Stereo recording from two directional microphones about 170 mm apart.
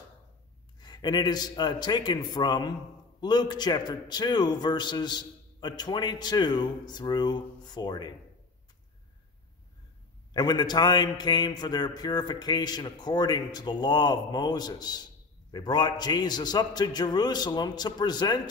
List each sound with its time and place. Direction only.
0.7 s a man's voice: 25° left (ahead or behind)
10.3 s a man's voice: 25° left (ahead or behind)